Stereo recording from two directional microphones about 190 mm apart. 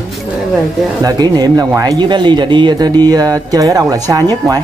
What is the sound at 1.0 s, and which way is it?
Speech, 20° right (ahead or behind).